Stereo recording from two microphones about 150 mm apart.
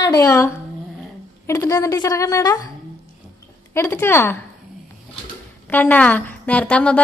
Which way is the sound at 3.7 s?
15° left (ahead or behind).